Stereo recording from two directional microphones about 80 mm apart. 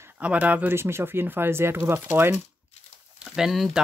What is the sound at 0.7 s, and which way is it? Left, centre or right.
Speech, right.